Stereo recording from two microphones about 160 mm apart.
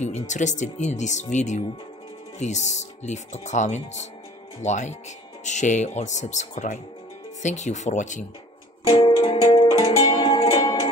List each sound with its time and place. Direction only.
0.0 s speech: 50° left (ahead or behind)
8.8 s music: 30° left (ahead or behind)